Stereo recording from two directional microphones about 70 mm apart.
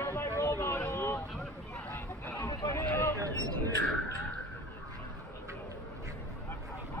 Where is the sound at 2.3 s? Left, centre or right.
Left.